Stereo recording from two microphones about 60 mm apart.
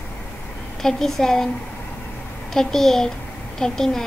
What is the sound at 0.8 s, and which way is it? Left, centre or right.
Speech, centre.